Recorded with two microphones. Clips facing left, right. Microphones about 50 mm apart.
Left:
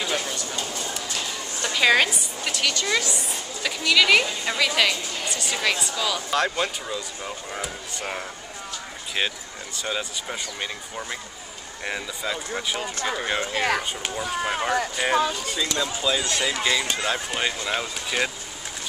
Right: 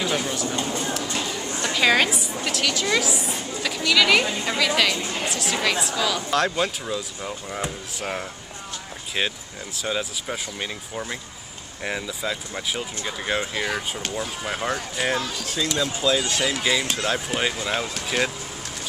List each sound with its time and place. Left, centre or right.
0.0 s speech: centre
0.5 s speech: right
1.6 s a woman's voice: centre
9.8 s a woman's voice: centre
13.6 s speech: left
14.0 s speech: centre
15.1 s speech: left
15.4 s a woman's voice: centre